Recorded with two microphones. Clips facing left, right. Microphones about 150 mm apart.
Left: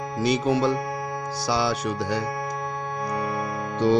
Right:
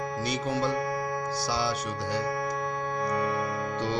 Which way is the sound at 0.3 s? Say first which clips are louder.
Left 8 dB; 90° left.